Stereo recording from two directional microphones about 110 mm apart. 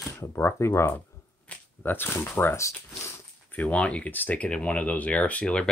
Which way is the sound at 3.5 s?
15° left (ahead or behind).